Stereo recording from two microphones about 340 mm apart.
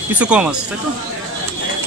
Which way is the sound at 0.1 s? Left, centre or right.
Centre.